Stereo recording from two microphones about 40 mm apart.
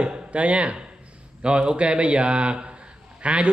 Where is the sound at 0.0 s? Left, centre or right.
Right.